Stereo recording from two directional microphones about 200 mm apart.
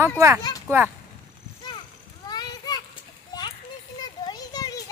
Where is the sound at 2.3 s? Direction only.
20° left (ahead or behind).